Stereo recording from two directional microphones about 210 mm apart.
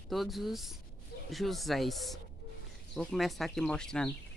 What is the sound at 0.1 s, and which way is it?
Speech, centre (ahead or behind).